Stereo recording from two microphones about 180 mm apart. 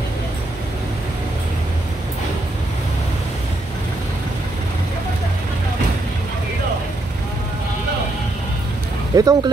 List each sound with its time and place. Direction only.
9.1 s speech: 20° right (ahead or behind)